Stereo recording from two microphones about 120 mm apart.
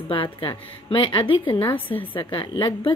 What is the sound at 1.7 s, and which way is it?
Speech, 15° left (ahead or behind).